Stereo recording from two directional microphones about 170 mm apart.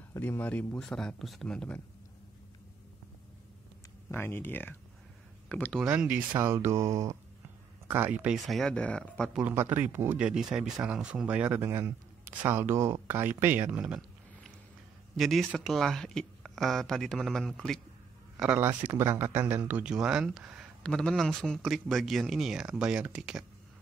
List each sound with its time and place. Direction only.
0.1 s speech: 15° left (ahead or behind)
4.1 s speech: 15° left (ahead or behind)
5.9 s speech: 10° right (ahead or behind); by 9.3 s 5° left (ahead or behind)
9.3 s speech: 10° right (ahead or behind)